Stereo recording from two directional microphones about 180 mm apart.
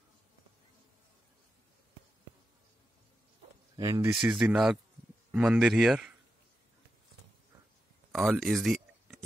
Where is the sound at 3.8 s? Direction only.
15° right (ahead or behind).